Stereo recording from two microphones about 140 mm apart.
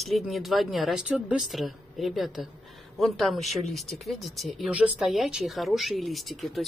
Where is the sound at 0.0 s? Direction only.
Centre (ahead or behind).